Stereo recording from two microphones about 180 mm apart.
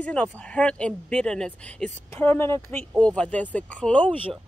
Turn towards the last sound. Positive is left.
turn(degrees=5)  # may be behind; listen again after turning